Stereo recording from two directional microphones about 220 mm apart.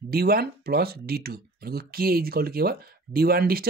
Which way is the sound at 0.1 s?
45° right (ahead or behind).